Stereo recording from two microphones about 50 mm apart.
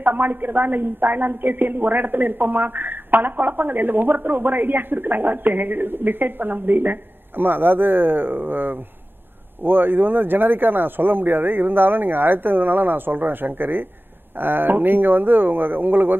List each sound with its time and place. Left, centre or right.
0.0 s a woman's voice: right